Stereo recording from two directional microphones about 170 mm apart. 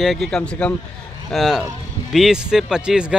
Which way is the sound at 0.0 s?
Centre (ahead or behind).